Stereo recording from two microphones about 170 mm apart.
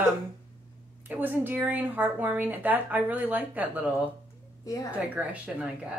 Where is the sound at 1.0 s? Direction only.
10° right (ahead or behind).